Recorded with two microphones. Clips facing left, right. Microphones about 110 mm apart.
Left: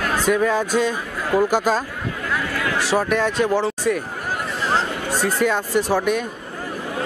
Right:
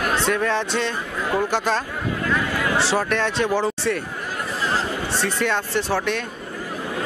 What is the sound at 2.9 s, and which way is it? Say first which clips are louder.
Speech: left 2 dB; 5° left (ahead or behind).